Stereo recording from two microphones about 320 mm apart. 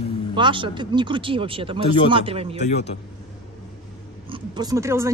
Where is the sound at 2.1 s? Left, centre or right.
Centre.